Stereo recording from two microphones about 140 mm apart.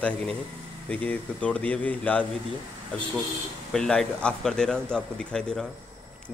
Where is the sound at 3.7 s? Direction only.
5° left (ahead or behind).